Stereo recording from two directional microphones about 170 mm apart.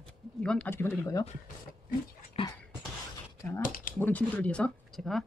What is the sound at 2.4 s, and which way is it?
Beatboxing, 35° left (ahead or behind).